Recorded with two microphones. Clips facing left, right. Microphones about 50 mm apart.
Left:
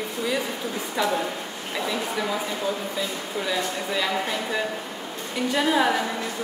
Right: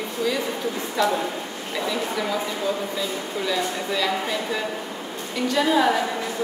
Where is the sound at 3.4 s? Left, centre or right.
Centre.